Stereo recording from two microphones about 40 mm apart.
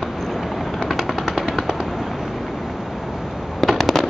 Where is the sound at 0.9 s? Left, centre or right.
Centre.